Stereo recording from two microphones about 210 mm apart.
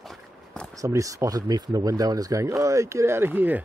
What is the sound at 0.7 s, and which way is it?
Speech, 15° right (ahead or behind).